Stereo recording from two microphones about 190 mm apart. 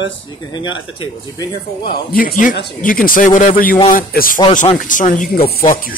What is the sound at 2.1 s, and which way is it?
Speech, 45° left (ahead or behind).